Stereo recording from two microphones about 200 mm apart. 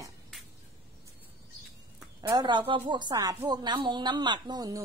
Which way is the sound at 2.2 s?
20° right (ahead or behind).